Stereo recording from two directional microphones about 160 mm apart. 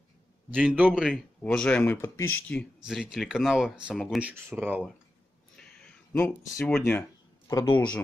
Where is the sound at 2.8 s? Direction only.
5° right (ahead or behind).